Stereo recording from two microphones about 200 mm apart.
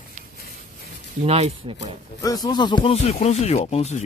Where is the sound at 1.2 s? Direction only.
30° right (ahead or behind).